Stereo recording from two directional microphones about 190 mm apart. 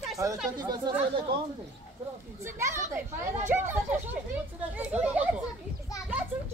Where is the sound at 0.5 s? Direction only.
20° right (ahead or behind).